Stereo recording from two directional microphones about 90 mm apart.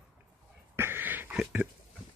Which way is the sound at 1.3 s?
10° right (ahead or behind).